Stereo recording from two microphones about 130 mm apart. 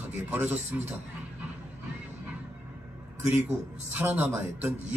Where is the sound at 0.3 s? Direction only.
15° right (ahead or behind).